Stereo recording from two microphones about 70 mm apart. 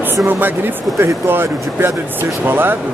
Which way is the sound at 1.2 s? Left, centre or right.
Right.